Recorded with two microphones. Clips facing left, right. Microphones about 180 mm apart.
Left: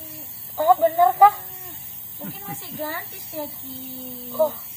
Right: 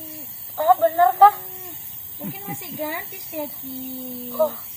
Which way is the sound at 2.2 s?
10° right (ahead or behind).